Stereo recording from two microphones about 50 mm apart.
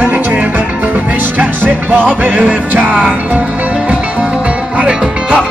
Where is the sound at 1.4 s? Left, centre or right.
Right.